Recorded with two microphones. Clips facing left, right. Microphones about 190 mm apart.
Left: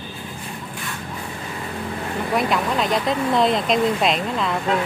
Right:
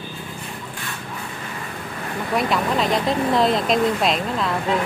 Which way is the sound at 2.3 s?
Centre (ahead or behind).